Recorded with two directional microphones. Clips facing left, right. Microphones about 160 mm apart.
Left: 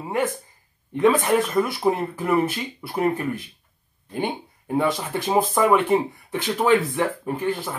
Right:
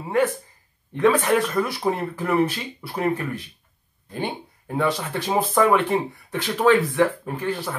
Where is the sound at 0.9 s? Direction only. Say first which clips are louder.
Even; 20° left (ahead or behind).